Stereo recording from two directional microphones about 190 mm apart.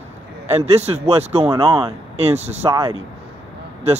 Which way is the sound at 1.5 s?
20° right (ahead or behind).